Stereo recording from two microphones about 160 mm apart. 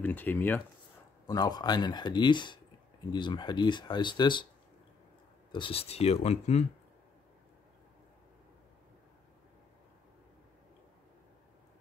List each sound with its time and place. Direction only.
0.0 s speech: 10° left (ahead or behind)
1.2 s speech: 25° left (ahead or behind)
5.5 s speech: 35° left (ahead or behind)